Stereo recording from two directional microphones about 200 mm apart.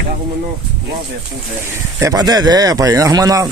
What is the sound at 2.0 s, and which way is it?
Speech, 20° right (ahead or behind).